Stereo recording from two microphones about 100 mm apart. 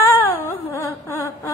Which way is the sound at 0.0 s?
20° left (ahead or behind).